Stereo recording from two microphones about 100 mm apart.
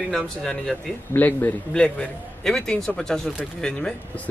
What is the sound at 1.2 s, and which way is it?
Speech, 20° left (ahead or behind).